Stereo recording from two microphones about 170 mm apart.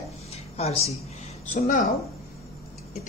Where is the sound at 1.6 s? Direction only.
50° left (ahead or behind).